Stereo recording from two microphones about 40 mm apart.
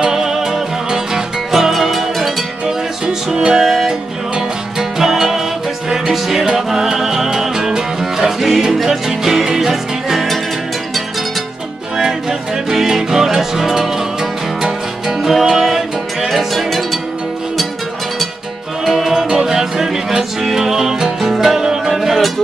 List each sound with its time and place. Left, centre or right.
0.0 s music: centre
2.6 s music: centre
3.5 s music: centre
8.4 s music: centre
12.0 s music: centre
15.3 s music: centre
18.9 s music: centre